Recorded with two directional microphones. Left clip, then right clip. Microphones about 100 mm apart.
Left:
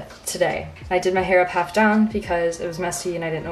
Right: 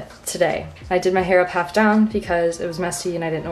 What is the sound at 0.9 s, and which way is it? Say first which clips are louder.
A woman's voice: right 1 dB; 20° right (ahead or behind).